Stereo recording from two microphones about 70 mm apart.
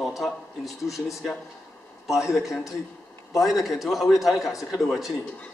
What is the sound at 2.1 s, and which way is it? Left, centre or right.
A man's voice, centre.